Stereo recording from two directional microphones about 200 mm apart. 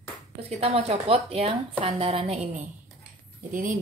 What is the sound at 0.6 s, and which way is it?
Speech, 30° right (ahead or behind).